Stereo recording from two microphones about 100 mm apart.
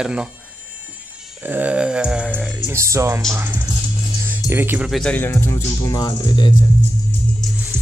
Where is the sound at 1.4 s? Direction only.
15° right (ahead or behind).